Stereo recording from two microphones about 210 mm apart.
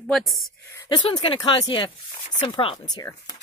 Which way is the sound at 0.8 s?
20° left (ahead or behind).